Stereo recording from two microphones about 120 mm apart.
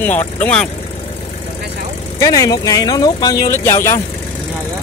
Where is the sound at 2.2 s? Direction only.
30° left (ahead or behind).